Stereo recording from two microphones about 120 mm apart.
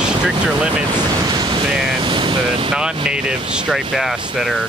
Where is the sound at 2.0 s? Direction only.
45° right (ahead or behind).